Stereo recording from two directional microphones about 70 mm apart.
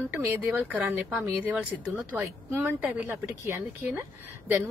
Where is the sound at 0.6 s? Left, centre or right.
Right.